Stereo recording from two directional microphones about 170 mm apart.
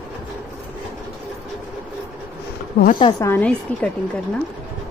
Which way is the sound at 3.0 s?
25° left (ahead or behind).